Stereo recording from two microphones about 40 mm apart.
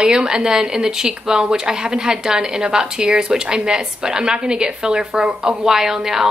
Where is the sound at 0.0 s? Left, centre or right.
Centre.